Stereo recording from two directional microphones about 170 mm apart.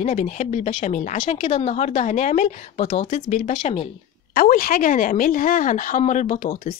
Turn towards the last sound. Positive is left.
turn(degrees=55)  # may be behind; listen again after turning